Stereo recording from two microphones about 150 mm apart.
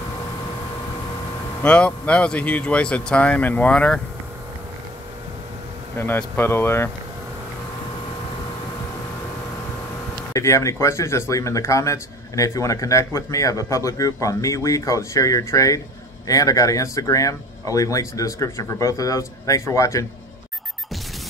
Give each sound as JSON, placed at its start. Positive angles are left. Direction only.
{"t": 1.6, "sound": "speech", "side_deg": 10}
{"t": 5.9, "sound": "speech", "side_deg": 15}
{"t": 10.3, "sound": "speech", "side_deg": 20}